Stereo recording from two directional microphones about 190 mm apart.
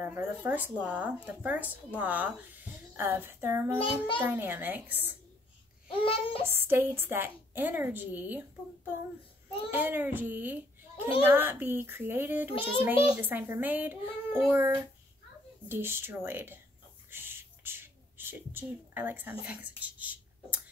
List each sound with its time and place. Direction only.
0.0 s a woman's voice: 10° right (ahead or behind)
5.9 s speech: 30° left (ahead or behind)
6.4 s a woman's voice: 10° right (ahead or behind)
17.1 s a sound: 10° right (ahead or behind)